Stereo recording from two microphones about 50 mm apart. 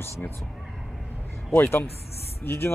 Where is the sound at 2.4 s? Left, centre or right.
Left.